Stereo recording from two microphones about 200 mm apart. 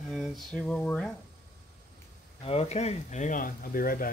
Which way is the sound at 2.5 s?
30° left (ahead or behind).